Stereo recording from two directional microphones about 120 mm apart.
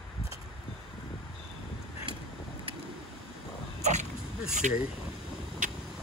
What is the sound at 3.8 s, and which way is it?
Dog, 75° right (ahead or behind).